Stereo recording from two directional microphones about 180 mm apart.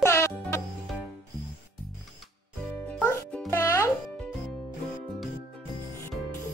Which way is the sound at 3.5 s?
15° left (ahead or behind).